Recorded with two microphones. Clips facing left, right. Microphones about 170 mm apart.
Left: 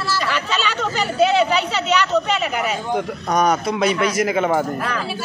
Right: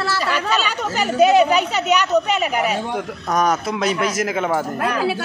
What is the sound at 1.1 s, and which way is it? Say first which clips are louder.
Speech: right 3 dB; 45° right (ahead or behind).